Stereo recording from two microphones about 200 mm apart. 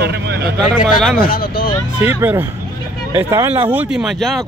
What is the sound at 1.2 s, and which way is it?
Speech, 45° left (ahead or behind).